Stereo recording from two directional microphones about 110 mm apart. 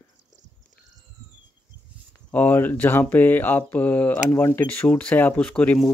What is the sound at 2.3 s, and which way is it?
Speech, 15° left (ahead or behind).